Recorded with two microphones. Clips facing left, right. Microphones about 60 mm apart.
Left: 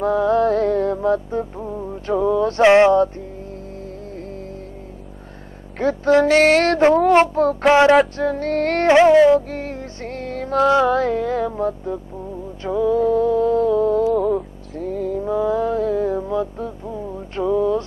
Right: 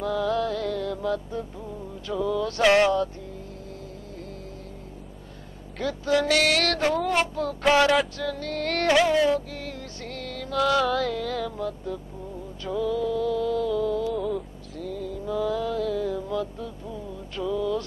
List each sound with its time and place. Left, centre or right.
0.0 s music: left
5.8 s music: left
12.6 s a sound: left
14.8 s music: left
15.3 s music: left